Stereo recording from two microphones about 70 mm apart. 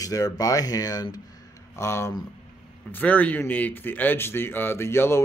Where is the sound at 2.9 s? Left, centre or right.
Left.